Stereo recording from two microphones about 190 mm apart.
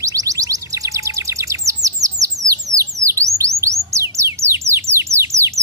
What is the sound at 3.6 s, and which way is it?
Bird, 15° right (ahead or behind).